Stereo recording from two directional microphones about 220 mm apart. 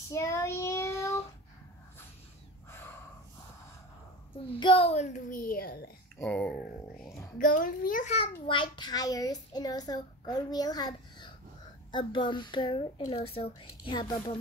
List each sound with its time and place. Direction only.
0.1 s child singing: 15° left (ahead or behind)
4.5 s a woman's voice: 25° left (ahead or behind); by 5.9 s 40° left (ahead or behind)
6.1 s speech: 5° left (ahead or behind)
7.3 s a woman's voice: 40° left (ahead or behind)
8.5 s a child's voice: 20° left (ahead or behind)